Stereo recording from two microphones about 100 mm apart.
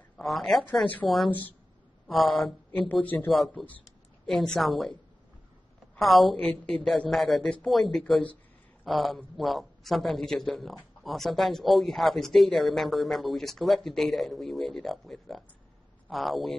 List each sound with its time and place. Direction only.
0.2 s a man's voice: centre (ahead or behind)
2.7 s speech: 15° left (ahead or behind)
3.3 s a man's voice: centre (ahead or behind)
5.9 s a man's voice: centre (ahead or behind)
8.0 s speech: 15° left (ahead or behind)
8.8 s a man's voice: centre (ahead or behind)